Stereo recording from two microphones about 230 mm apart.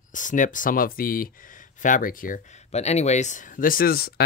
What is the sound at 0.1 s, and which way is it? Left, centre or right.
Speech, left.